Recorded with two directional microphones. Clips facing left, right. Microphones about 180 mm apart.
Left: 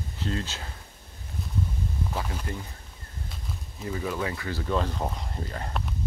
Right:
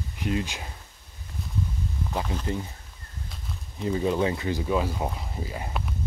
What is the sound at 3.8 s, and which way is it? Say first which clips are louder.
Speech: right 6 dB; 25° right (ahead or behind).